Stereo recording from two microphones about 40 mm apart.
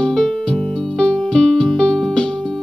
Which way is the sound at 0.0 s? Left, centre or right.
Centre.